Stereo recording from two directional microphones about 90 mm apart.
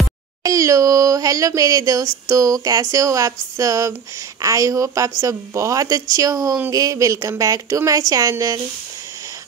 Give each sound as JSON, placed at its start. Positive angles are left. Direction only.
{"t": 0.4, "sound": "speech", "side_deg": -40}